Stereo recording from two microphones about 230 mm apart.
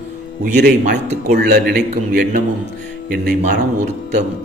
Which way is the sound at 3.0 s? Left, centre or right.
Right.